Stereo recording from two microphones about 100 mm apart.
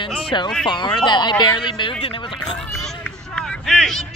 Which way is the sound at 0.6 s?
50° left (ahead or behind).